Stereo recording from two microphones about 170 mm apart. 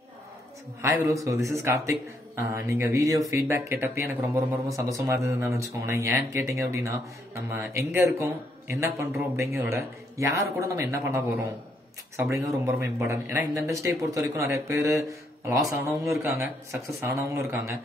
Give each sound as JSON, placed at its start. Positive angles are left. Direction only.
{"t": 0.8, "sound": "speech", "side_deg": -20}